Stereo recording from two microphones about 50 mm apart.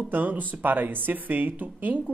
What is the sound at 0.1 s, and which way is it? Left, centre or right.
Speech, right.